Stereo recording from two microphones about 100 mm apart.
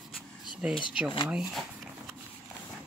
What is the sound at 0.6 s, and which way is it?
Speech, 10° right (ahead or behind).